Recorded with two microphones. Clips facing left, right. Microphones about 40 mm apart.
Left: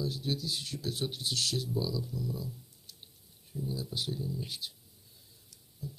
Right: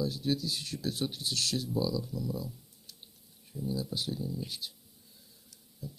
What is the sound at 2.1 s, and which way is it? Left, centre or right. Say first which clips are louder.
Speech: right 2 dB; centre.